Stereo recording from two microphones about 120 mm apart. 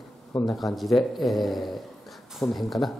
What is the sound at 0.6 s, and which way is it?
A man's voice, centre (ahead or behind).